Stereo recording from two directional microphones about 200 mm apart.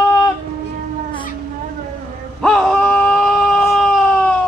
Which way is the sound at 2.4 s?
Centre (ahead or behind).